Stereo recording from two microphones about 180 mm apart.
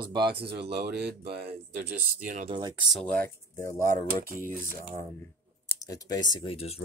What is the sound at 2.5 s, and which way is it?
Speech, 20° right (ahead or behind).